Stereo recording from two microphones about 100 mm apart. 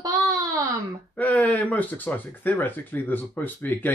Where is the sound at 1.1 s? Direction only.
15° left (ahead or behind).